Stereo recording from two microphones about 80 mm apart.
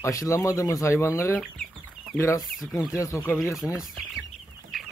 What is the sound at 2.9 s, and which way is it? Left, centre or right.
Speech, left.